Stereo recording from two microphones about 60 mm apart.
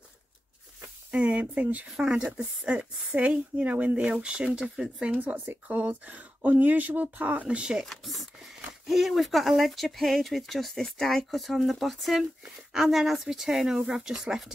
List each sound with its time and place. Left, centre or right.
1.1 s speech: right
1.9 s speech: centre
5.0 s speech: right
7.8 s speech: centre